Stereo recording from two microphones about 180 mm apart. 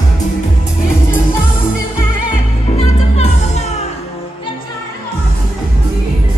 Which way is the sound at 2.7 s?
35° left (ahead or behind).